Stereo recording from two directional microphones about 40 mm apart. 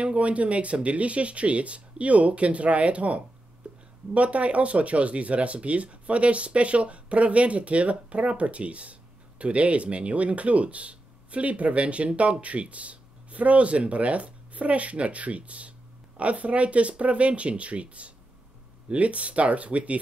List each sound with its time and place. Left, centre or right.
0.0 s speech: right
3.6 s a sound: right
4.1 s speech: right